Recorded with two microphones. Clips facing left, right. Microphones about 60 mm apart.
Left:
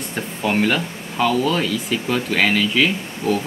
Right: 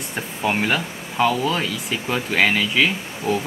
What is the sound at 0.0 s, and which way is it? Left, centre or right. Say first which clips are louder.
Speech: left 1 dB; centre.